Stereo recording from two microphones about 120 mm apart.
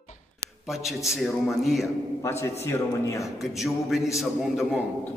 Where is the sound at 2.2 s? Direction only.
25° left (ahead or behind).